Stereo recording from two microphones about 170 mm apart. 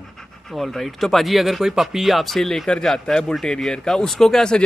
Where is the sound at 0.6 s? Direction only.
Centre (ahead or behind).